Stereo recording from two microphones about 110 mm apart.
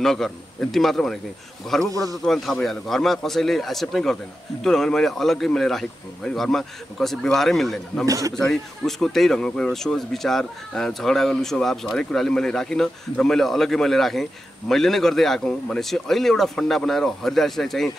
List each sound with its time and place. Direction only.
0.0 s speech: 5° left (ahead or behind)
8.0 s a man's voice: 30° right (ahead or behind)
8.4 s speech: 5° left (ahead or behind)